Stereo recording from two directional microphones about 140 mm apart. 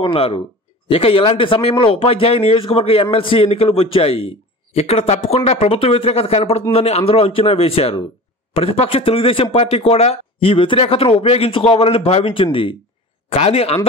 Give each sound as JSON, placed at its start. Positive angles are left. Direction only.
{"t": 0.0, "sound": "speech", "side_deg": 40}